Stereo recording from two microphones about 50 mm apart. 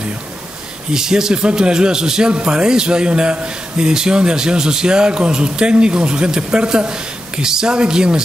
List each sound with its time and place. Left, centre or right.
0.9 s a man's voice: centre